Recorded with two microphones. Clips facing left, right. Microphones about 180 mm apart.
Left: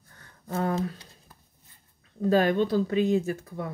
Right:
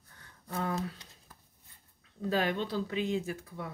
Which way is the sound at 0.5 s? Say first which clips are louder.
Left 6 dB; 45° left (ahead or behind).